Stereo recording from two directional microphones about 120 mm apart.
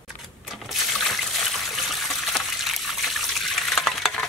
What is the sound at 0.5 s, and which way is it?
Trickle, centre (ahead or behind).